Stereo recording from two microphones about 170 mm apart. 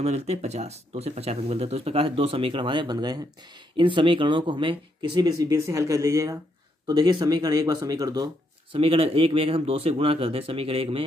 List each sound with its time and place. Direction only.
0.0 s speech: 40° right (ahead or behind); by 8.3 s 20° right (ahead or behind)
8.7 s speech: 35° right (ahead or behind)